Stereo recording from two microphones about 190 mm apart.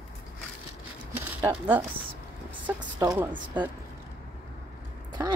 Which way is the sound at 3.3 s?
25° right (ahead or behind).